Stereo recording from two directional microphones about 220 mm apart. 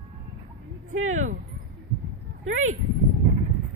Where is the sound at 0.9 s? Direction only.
65° right (ahead or behind).